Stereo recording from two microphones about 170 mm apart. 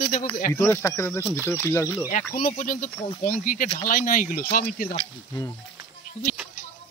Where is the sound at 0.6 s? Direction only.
20° left (ahead or behind).